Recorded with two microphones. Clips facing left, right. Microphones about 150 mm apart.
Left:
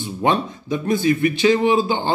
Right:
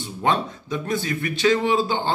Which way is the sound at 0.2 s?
15° left (ahead or behind).